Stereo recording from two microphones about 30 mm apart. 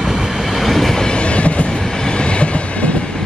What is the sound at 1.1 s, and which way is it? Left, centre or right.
Train, left.